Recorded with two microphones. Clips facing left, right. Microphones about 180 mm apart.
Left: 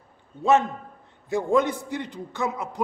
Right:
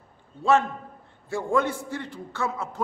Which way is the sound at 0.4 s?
20° left (ahead or behind).